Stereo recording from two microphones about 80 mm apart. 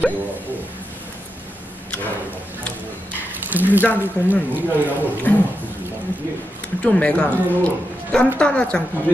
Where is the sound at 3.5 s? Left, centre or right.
Right.